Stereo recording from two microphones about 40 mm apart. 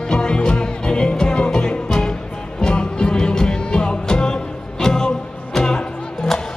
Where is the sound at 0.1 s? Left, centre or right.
Centre.